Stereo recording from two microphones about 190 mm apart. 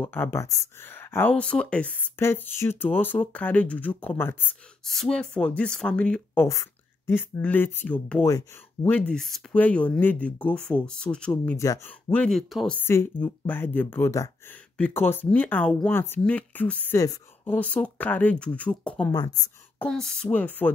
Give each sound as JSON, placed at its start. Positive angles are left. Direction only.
{"t": 0.0, "sound": "speech", "side_deg": 10}
{"t": 11.5, "sound": "speech", "side_deg": 15}
{"t": 17.6, "sound": "speech", "side_deg": 5}